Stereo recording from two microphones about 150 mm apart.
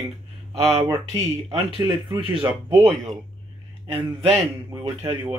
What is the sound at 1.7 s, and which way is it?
Speech, 35° right (ahead or behind).